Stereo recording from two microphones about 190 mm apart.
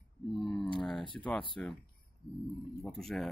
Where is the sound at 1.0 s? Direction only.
25° left (ahead or behind).